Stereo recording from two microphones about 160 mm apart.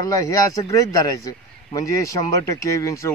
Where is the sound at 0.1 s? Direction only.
20° left (ahead or behind).